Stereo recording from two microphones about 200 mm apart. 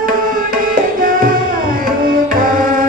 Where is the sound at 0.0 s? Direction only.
45° right (ahead or behind).